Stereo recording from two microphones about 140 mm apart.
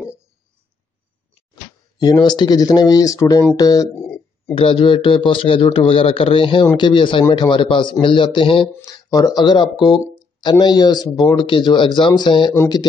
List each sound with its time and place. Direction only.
1.5 s speech: 30° left (ahead or behind)
4.6 s a man's voice: 40° left (ahead or behind)
8.7 s a man's voice: 25° left (ahead or behind)